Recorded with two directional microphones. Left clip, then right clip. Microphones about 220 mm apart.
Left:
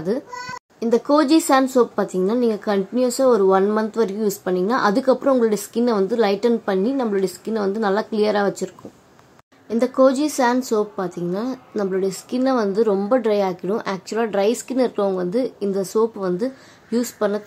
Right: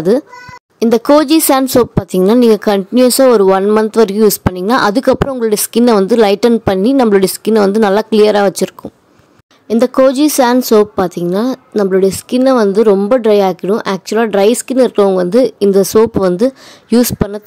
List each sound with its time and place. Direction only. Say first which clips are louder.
0.7 s a woman's voice: right 9 dB; 45° right (ahead or behind)